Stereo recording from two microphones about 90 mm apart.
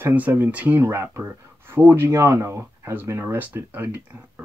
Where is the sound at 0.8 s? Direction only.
30° right (ahead or behind).